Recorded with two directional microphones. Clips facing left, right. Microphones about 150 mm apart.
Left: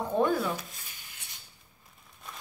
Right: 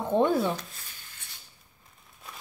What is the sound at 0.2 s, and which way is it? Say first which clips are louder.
Rub: right 2 dB; 30° right (ahead or behind).